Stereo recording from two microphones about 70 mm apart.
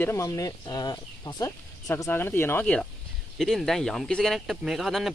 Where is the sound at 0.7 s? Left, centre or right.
Left.